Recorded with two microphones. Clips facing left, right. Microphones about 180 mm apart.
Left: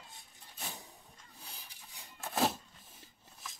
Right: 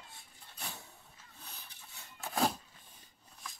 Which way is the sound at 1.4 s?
10° left (ahead or behind).